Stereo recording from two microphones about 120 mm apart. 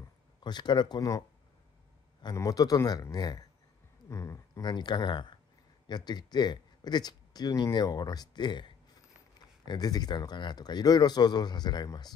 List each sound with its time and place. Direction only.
0.4 s speech: 35° left (ahead or behind)
2.3 s speech: 30° left (ahead or behind)